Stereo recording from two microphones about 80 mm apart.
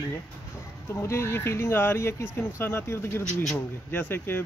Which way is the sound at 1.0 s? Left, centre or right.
Left.